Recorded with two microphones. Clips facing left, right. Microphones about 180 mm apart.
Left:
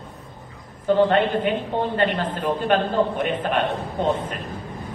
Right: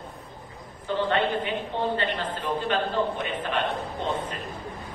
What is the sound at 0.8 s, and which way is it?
A man's voice, 50° left (ahead or behind).